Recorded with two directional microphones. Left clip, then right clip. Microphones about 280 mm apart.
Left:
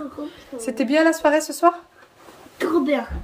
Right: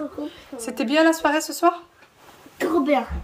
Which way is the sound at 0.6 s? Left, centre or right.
Centre.